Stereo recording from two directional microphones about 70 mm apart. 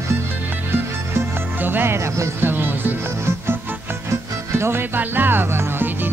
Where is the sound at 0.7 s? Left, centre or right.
Right.